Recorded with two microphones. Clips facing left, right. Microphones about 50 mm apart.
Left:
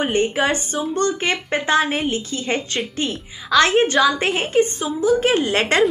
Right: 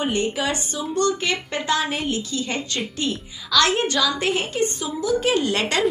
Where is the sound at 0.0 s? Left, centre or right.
Left.